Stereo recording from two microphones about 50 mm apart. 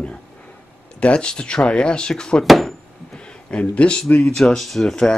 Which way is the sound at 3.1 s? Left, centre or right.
Left.